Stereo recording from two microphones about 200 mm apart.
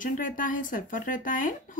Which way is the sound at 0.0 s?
40° left (ahead or behind).